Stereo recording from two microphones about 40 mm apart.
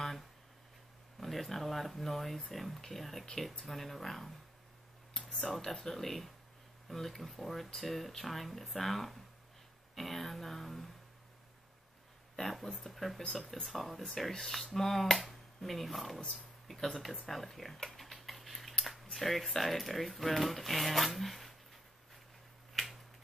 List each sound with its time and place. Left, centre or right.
1.2 s speech: centre
5.5 s speech: centre
12.4 s speech: centre
17.8 s tick-tock: centre
19.1 s speech: centre